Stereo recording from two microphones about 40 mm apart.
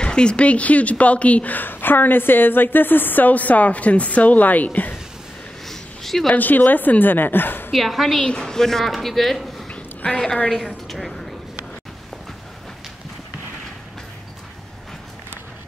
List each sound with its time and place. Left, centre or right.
0.0 s speech: left
5.7 s a sound: centre
6.3 s a woman's voice: left
7.7 s a woman's voice: centre
8.2 s a woman's voice: left
9.7 s a sound: left
10.9 s mechanisms: centre